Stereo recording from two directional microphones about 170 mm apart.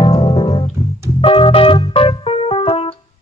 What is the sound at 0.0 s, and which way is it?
Music, 30° left (ahead or behind).